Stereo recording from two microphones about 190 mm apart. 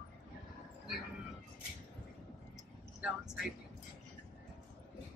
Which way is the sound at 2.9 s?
5° right (ahead or behind).